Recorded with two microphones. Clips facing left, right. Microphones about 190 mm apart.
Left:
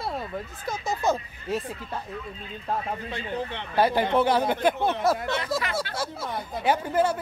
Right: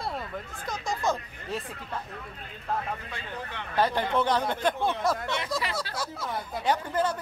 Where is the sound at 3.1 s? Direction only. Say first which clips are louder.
Left 7 dB; 25° left (ahead or behind).